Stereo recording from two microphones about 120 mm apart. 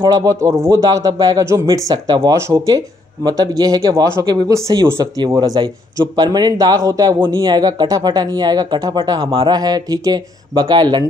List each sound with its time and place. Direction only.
0.0 s a man's voice: 30° right (ahead or behind)